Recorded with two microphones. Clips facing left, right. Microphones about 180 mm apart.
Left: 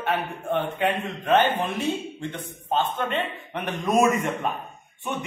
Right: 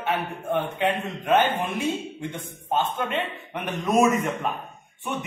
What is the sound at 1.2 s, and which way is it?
A man's voice, 10° right (ahead or behind).